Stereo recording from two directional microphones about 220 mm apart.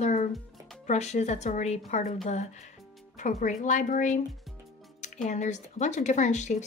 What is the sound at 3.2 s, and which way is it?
A woman's voice, 35° left (ahead or behind).